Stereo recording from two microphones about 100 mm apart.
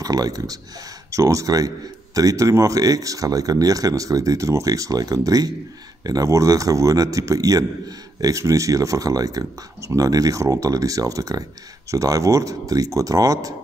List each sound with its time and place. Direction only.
0.0 s speech: 40° right (ahead or behind)